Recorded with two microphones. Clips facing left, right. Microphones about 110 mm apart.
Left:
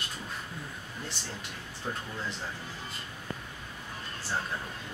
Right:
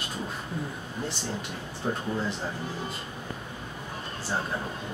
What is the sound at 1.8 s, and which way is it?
Speech, 20° right (ahead or behind).